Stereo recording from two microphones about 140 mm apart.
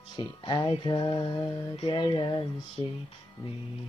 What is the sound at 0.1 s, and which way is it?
Music, 30° left (ahead or behind).